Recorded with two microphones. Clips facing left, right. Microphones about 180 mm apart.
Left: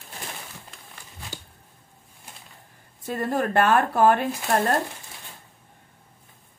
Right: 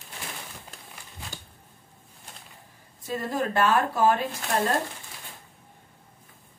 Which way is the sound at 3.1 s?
60° left (ahead or behind).